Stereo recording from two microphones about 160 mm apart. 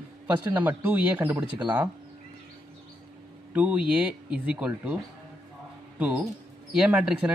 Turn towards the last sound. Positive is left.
turn(degrees=-5)  # may be behind; listen again after turning